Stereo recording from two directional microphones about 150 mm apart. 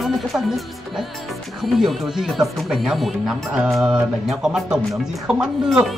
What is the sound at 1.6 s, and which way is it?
Speech, centre (ahead or behind).